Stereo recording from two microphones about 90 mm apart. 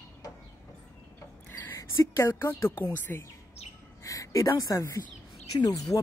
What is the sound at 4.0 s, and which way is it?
A woman's voice, 35° left (ahead or behind).